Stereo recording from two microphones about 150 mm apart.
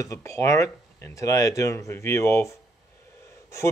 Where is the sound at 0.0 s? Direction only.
20° left (ahead or behind).